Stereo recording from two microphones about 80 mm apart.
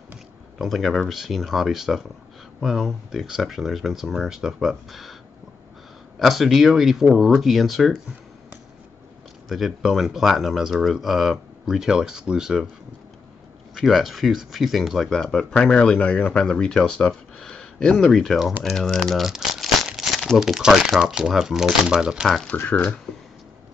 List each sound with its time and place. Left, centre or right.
0.6 s speech: centre
6.1 s speech: centre
9.5 s speech: centre
13.7 s speech: centre
22.5 s speech: centre